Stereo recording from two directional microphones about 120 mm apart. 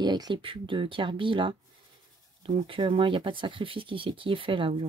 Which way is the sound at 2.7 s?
45° right (ahead or behind).